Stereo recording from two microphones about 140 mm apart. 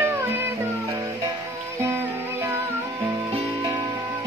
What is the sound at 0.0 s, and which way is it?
Music, 15° right (ahead or behind).